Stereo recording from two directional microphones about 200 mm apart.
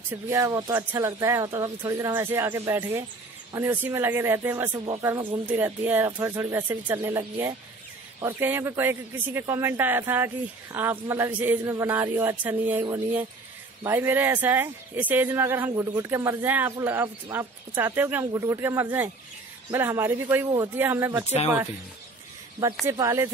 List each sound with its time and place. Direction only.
0.1 s speech: 15° right (ahead or behind)
22.8 s speech: 15° right (ahead or behind)